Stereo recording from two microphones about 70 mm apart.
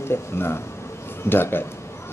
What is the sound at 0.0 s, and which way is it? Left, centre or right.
Speech, left.